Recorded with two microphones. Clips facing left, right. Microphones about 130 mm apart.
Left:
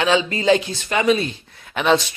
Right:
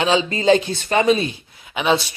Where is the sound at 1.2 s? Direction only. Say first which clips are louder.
Right 1 dB; 10° right (ahead or behind).